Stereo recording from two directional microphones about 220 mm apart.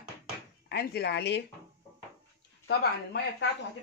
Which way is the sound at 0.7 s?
50° left (ahead or behind).